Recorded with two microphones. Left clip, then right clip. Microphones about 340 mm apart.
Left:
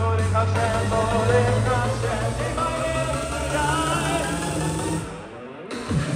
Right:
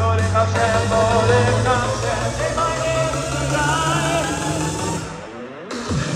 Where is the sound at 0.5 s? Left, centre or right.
Right.